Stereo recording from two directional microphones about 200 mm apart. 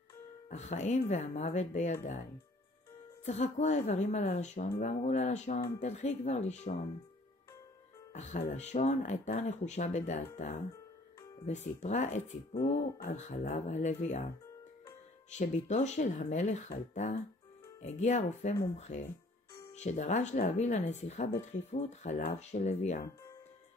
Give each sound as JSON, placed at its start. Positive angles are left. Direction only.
{"t": 0.5, "sound": "speech", "side_deg": 35}
{"t": 3.3, "sound": "speech", "side_deg": 35}
{"t": 8.1, "sound": "speech", "side_deg": 35}
{"t": 15.3, "sound": "speech", "side_deg": 35}